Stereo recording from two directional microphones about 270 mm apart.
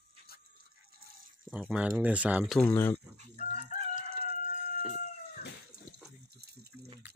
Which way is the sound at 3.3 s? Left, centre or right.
Left.